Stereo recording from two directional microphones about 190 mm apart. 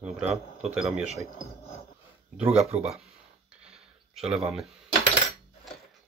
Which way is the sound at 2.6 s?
35° right (ahead or behind).